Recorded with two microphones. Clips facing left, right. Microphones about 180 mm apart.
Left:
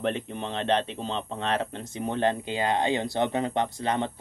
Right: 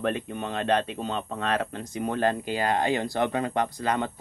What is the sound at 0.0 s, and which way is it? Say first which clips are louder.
Speech: right 1 dB; 25° left (ahead or behind).